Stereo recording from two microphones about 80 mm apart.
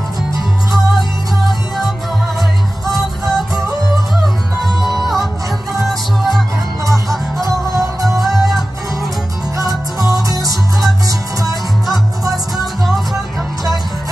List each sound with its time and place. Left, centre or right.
0.9 s music: centre
3.0 s music: centre
4.6 s music: centre
7.4 s music: right
8.2 s music: centre
9.6 s music: right
12.5 s music: centre